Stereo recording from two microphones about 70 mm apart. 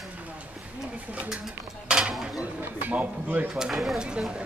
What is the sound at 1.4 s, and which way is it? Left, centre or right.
Dishes, centre.